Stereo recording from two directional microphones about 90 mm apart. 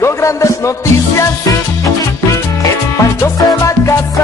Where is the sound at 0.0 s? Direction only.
35° left (ahead or behind).